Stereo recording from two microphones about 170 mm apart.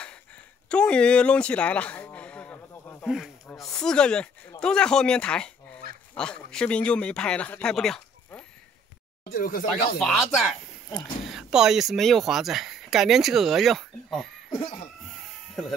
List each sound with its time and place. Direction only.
0.7 s a sound: 5° left (ahead or behind)
3.1 s speech: centre (ahead or behind)
9.3 s speech: 60° left (ahead or behind)
9.9 s speech: centre (ahead or behind)